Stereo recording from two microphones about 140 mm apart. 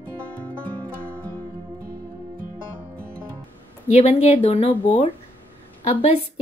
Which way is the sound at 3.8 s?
50° left (ahead or behind).